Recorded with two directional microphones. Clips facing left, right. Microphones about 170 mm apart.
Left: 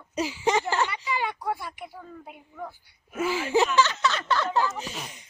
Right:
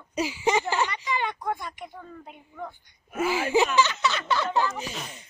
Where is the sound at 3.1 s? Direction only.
55° right (ahead or behind).